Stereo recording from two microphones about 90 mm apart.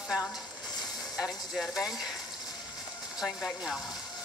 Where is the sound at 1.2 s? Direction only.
Centre (ahead or behind).